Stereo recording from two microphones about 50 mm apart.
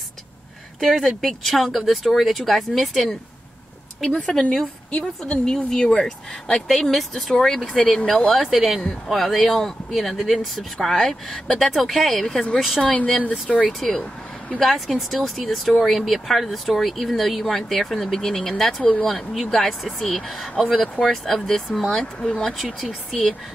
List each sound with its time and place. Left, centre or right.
0.7 s speech: centre
4.0 s speech: centre
12.9 s speech: left
13.7 s speech: centre
22.0 s speech: centre
22.5 s speech: centre